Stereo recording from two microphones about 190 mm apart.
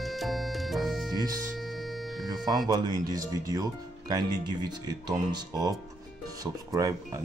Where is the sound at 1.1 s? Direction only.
20° right (ahead or behind).